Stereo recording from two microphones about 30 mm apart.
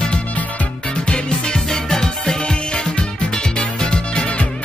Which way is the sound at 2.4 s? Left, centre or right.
Left.